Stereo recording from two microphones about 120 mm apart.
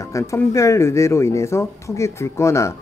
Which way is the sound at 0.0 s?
25° left (ahead or behind).